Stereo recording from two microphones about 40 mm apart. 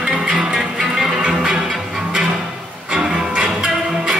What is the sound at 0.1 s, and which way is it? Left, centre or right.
Music, centre.